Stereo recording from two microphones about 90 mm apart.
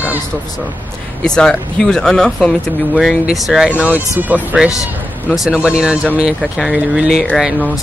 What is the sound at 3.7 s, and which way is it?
Speech, 15° right (ahead or behind).